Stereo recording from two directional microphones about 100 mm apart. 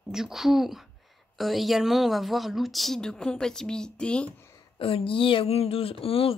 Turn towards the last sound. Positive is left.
turn(degrees=70)  # may be behind; listen again after turning